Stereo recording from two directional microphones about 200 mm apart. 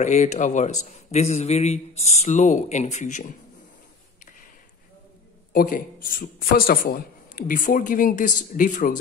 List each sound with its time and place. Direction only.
0.0 s speech: 35° left (ahead or behind)
5.5 s a man's voice: 45° left (ahead or behind)